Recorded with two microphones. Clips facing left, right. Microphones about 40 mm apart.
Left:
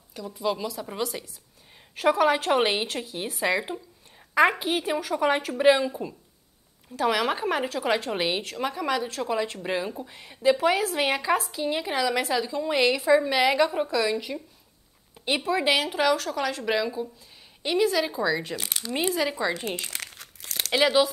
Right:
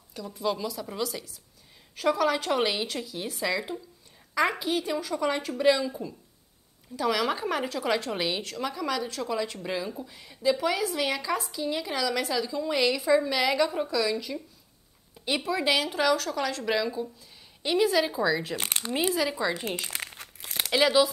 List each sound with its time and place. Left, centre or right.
0.1 s a woman's voice: centre
17.6 s speech: centre
19.9 s crumpling: right
20.7 s speech: centre